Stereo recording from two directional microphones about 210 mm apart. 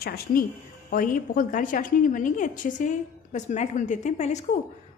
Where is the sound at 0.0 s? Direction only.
45° left (ahead or behind).